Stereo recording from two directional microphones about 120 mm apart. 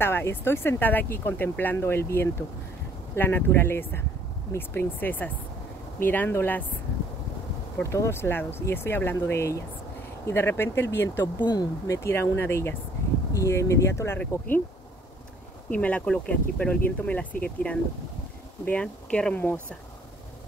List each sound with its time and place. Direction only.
0.0 s speech: 20° left (ahead or behind)
7.8 s speech: 25° left (ahead or behind)
11.3 s speech: 40° left (ahead or behind)
11.9 s speech: 20° left (ahead or behind)
15.7 s speech: 10° left (ahead or behind)